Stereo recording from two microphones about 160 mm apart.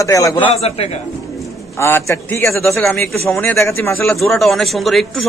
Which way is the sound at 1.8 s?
15° left (ahead or behind).